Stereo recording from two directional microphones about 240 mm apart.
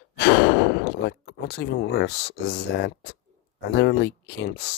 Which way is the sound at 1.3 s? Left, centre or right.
Left.